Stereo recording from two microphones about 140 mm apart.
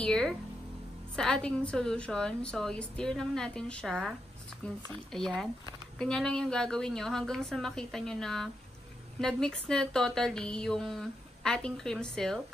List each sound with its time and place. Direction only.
0.0 s speech: 5° left (ahead or behind)
5.1 s speech: centre (ahead or behind)